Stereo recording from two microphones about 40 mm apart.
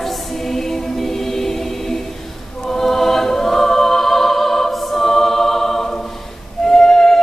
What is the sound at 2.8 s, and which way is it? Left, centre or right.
Choir, centre.